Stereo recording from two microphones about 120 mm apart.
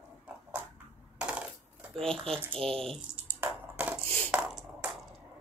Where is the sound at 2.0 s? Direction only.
5° left (ahead or behind).